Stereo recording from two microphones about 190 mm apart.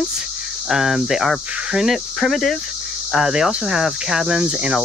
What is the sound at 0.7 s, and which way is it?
Speech, centre (ahead or behind).